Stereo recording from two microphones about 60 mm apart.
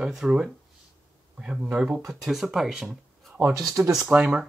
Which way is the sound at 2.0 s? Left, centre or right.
Centre.